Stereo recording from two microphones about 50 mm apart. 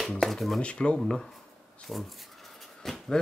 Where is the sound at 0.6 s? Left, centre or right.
Left.